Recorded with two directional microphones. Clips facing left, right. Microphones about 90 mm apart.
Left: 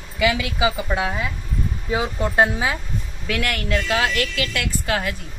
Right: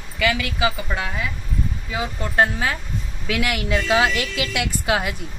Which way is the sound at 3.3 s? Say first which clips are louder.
Right 1 dB; 5° right (ahead or behind).